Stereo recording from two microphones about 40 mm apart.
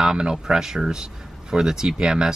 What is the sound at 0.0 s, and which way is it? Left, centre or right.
Speech, centre.